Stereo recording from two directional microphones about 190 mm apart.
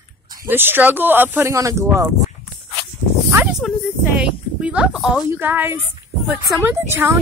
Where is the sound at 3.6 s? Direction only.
Centre (ahead or behind).